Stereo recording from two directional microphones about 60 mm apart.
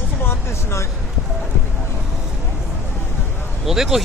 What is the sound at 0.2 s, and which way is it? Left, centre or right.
Vehicle, left.